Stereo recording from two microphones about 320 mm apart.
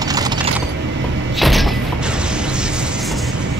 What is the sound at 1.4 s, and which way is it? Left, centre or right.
Thump, centre.